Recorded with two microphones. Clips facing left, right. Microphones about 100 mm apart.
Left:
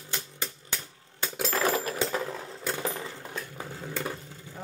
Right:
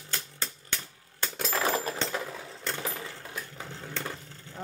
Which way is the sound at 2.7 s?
15° left (ahead or behind).